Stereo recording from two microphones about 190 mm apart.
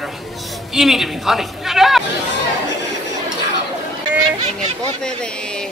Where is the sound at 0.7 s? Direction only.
Centre (ahead or behind).